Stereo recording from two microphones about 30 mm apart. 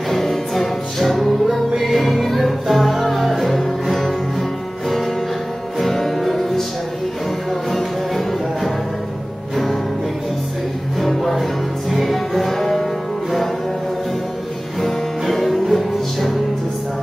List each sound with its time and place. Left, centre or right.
0.1 s music: centre
11.0 s music: centre
14.8 s music: centre